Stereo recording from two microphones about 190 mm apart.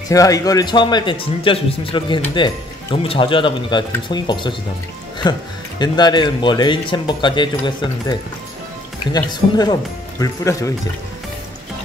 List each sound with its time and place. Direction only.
0.1 s speech: 20° left (ahead or behind)